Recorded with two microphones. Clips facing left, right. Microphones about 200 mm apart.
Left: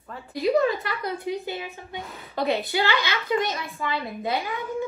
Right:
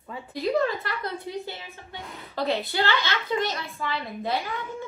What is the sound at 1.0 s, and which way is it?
A woman's voice, 15° left (ahead or behind).